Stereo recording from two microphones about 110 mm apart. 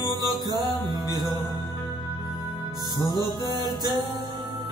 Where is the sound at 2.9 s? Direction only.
40° left (ahead or behind).